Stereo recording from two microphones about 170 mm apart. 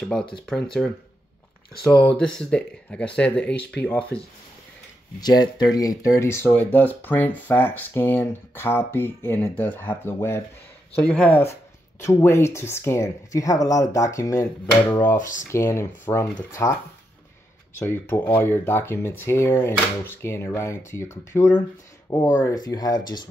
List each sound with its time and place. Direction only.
0.0 s speech: 5° left (ahead or behind)
5.2 s speech: 25° left (ahead or behind)
15.1 s speech: 50° left (ahead or behind)
15.4 s speech: 15° left (ahead or behind)
17.7 s speech: 15° left (ahead or behind)